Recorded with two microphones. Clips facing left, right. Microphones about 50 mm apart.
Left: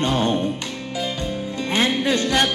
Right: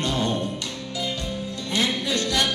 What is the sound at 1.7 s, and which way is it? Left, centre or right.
Music, left.